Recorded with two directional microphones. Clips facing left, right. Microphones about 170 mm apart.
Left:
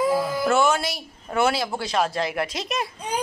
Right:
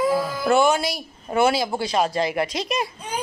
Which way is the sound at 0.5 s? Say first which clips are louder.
Right 3 dB; 15° right (ahead or behind).